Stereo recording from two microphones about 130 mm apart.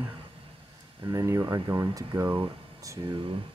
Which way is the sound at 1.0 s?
25° right (ahead or behind).